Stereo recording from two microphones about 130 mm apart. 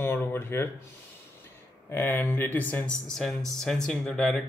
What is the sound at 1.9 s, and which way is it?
Speech, 15° left (ahead or behind).